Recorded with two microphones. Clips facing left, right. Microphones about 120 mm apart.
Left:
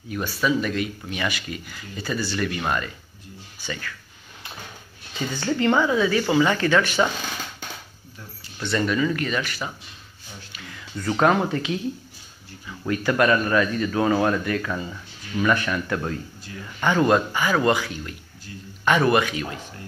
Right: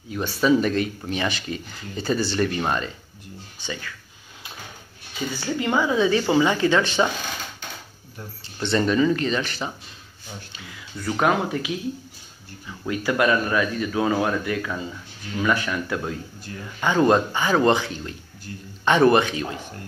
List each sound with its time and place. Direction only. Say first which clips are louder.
0.4 s a woman's voice: right 4 dB; 35° right (ahead or behind); by 3.9 s 20° right (ahead or behind)
5.3 s a woman's voice: left 3 dB; 10° right (ahead or behind)
8.5 s a woman's voice: right 3 dB; 30° right (ahead or behind)
10.5 s a sound: left 1 dB; 15° right (ahead or behind)
11.0 s speech: left 2 dB; 5° right (ahead or behind)
17.0 s a woman's voice: right 2 dB; 25° right (ahead or behind)